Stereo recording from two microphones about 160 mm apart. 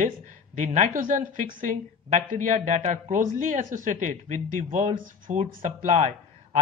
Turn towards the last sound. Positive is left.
turn(degrees=-45)  # may be behind; listen again after turning